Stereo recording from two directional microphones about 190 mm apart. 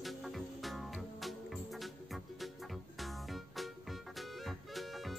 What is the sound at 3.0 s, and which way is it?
Music, centre (ahead or behind).